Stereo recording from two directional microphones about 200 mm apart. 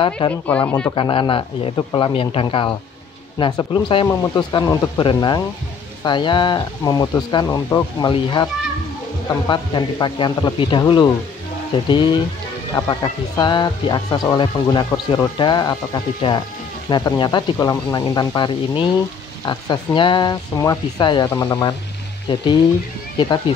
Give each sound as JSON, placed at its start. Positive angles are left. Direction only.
{"t": 0.2, "sound": "speech", "side_deg": 25}
{"t": 0.7, "sound": "speech", "side_deg": 10}
{"t": 0.9, "sound": "speech", "side_deg": 25}
{"t": 9.5, "sound": "speech", "side_deg": 20}